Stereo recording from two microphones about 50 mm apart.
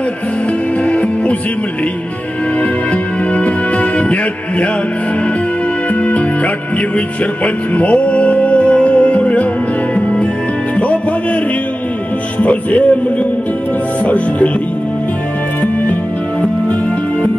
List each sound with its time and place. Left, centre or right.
0.8 s music: left
2.9 s music: left
6.0 s music: left
12.4 s speech: left
14.0 s speech: left